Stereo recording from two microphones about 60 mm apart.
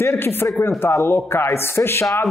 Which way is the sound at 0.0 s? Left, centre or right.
Left.